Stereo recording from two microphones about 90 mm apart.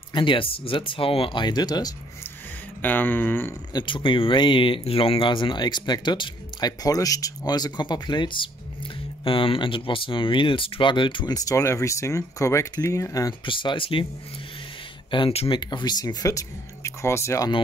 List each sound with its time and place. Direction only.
0.1 s speech: 65° left (ahead or behind); by 1.4 s 90° left
1.4 s speech: 50° left (ahead or behind)
2.8 s speech: 20° left (ahead or behind)
3.7 s speech: 65° left (ahead or behind)
6.8 s speech: 40° left (ahead or behind); by 8.5 s 65° left (ahead or behind)
9.2 s speech: 75° left (ahead or behind)
11.2 s speech: 40° left (ahead or behind)
13.5 s speech: 70° left (ahead or behind)
15.0 s speech: 70° left (ahead or behind); by 17.5 s 30° left (ahead or behind)